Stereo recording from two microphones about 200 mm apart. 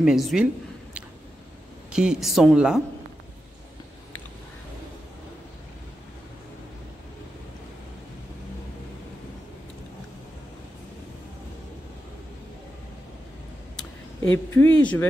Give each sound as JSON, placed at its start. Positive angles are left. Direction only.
{"t": 0.0, "sound": "speech", "side_deg": 0}
{"t": 1.9, "sound": "speech", "side_deg": -5}
{"t": 14.5, "sound": "speech", "side_deg": 10}